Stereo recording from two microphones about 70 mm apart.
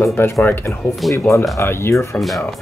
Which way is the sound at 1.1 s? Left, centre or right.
Left.